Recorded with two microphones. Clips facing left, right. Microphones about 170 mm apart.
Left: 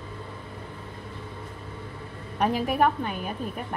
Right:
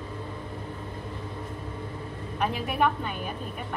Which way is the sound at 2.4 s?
40° left (ahead or behind).